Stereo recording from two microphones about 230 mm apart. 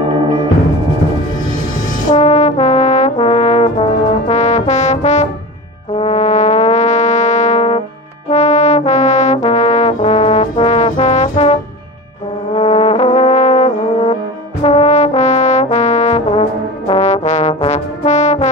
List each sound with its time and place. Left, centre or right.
2.0 s brass instrument: left
5.9 s music: left
8.3 s brass instrument: left
12.5 s brass instrument: left